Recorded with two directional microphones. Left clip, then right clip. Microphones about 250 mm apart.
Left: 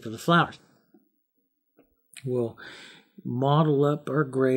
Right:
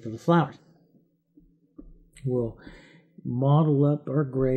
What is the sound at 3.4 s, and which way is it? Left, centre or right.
Speech, centre.